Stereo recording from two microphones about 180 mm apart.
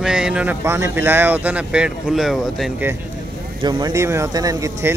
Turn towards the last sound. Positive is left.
turn(degrees=-15)  # may be behind; listen again after turning